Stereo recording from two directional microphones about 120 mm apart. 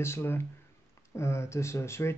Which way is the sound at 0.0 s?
20° left (ahead or behind).